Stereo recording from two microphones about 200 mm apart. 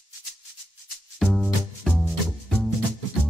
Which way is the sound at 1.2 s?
Centre (ahead or behind).